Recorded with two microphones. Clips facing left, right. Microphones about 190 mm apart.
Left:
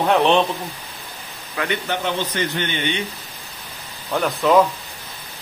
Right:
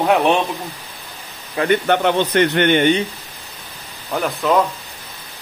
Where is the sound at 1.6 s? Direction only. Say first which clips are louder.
Right 8 dB; 55° right (ahead or behind).